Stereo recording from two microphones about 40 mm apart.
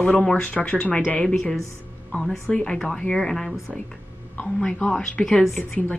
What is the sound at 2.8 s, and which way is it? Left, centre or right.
Speech, left.